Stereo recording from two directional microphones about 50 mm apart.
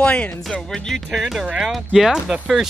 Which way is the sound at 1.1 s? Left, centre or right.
Centre.